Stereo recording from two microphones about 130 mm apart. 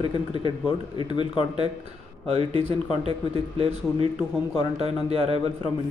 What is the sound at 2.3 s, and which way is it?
Speech, 45° right (ahead or behind).